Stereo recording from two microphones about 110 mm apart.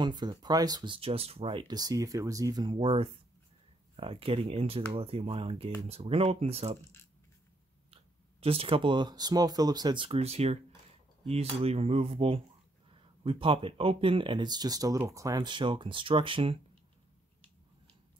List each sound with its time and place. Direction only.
0.0 s speech: 40° right (ahead or behind)
0.9 s speech: 60° right (ahead or behind)
1.7 s speech: 35° right (ahead or behind)
2.8 s speech: 55° right (ahead or behind)
7.9 s speech: 65° right (ahead or behind); by 10.0 s 40° right (ahead or behind)
10.0 s cutlery: 70° right (ahead or behind)
13.2 s speech: 55° right (ahead or behind)